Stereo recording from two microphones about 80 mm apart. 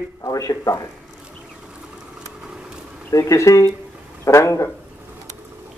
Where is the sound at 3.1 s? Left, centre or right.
Left.